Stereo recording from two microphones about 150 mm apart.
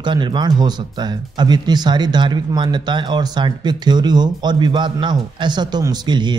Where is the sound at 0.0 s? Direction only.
30° right (ahead or behind).